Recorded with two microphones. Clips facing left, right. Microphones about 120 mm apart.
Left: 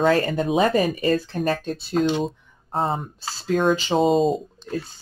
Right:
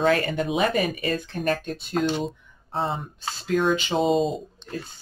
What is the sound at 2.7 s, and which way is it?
Speech, 45° left (ahead or behind).